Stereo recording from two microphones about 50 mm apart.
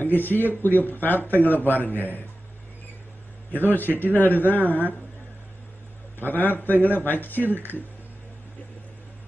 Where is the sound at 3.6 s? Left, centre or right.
Left.